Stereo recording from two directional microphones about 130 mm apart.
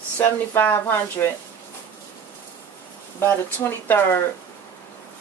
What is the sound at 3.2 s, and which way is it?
Speech, 15° left (ahead or behind).